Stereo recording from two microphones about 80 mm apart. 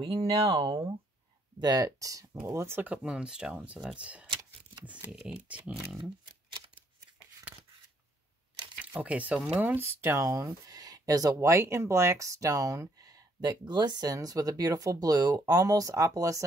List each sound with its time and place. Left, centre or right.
0.0 s speech: right
1.6 s speech: right
2.9 s speech: centre
5.9 s speech: centre
7.5 s a sound: centre
8.8 s speech: centre; by 16.4 s right